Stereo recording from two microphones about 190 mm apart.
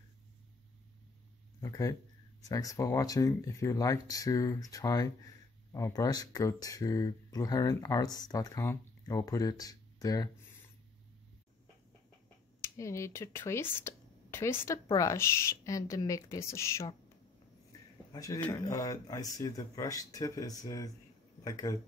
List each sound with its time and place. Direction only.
1.6 s speech: 15° left (ahead or behind)
12.6 s speech: 15° left (ahead or behind)
18.1 s speech: 15° left (ahead or behind)